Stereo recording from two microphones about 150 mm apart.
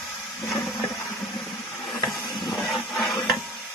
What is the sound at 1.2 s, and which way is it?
Vehicle, centre (ahead or behind).